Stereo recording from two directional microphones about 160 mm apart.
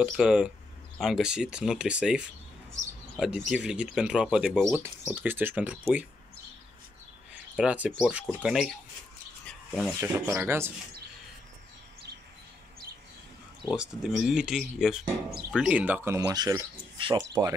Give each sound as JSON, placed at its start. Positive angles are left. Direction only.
{"t": 0.0, "sound": "speech", "side_deg": -5}
{"t": 4.7, "sound": "speech", "side_deg": -15}
{"t": 7.5, "sound": "speech", "side_deg": -10}
{"t": 9.7, "sound": "rub", "side_deg": 0}
{"t": 9.9, "sound": "speech", "side_deg": -15}
{"t": 13.7, "sound": "speech", "side_deg": -5}